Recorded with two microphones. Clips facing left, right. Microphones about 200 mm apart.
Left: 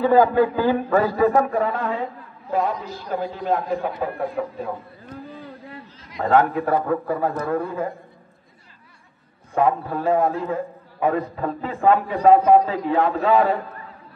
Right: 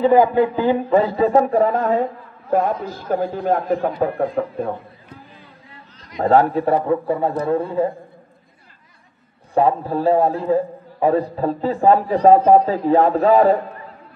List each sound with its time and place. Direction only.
0.0 s a man's voice: 15° right (ahead or behind)
1.2 s a man's voice: 30° right (ahead or behind)
2.5 s a man's voice: 50° right (ahead or behind)
6.2 s a man's voice: 35° right (ahead or behind)
9.5 s a man's voice: 35° right (ahead or behind)